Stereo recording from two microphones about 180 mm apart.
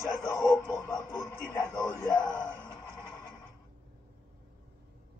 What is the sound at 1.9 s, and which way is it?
Speech, 25° left (ahead or behind).